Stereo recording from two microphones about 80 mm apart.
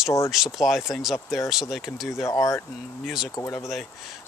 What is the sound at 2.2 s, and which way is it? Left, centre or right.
Speech, left.